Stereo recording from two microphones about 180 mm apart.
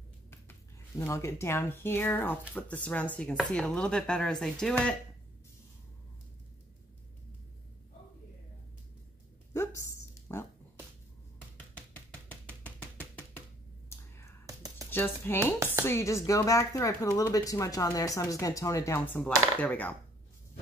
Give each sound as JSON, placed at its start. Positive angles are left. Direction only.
{"t": 0.3, "sound": "speech", "side_deg": 15}
{"t": 9.5, "sound": "a sound", "side_deg": 15}
{"t": 11.5, "sound": "music", "side_deg": 10}
{"t": 13.8, "sound": "whispering", "side_deg": 15}
{"t": 14.4, "sound": "a sound", "side_deg": -20}
{"t": 14.9, "sound": "speech", "side_deg": 10}